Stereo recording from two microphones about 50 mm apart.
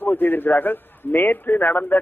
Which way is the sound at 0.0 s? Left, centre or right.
Left.